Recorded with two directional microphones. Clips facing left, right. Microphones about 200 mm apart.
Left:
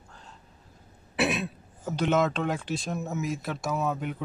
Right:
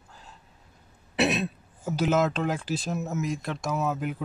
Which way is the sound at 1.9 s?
5° right (ahead or behind).